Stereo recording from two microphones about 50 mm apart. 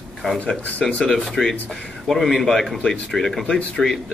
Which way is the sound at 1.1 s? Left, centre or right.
Centre.